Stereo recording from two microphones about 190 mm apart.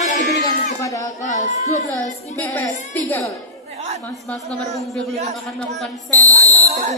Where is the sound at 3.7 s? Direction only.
35° right (ahead or behind).